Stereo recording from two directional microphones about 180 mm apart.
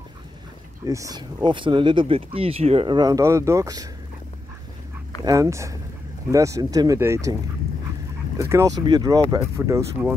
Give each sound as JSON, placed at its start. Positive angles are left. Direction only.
{"t": 0.8, "sound": "speech", "side_deg": -20}
{"t": 5.2, "sound": "speech", "side_deg": -20}
{"t": 8.4, "sound": "speech", "side_deg": -15}